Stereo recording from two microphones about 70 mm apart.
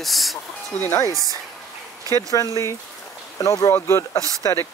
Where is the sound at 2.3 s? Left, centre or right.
Left.